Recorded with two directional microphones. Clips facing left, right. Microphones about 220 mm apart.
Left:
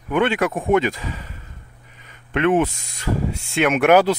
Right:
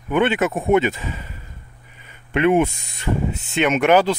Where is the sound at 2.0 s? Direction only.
10° right (ahead or behind).